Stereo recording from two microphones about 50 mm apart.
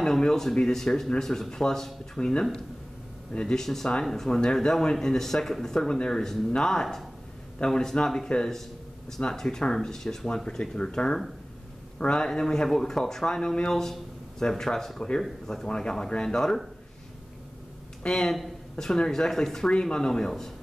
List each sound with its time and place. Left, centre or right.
0.0 s speech: centre
4.3 s speech: centre
18.0 s speech: centre